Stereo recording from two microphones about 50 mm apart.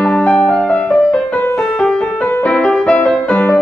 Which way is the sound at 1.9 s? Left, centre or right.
Centre.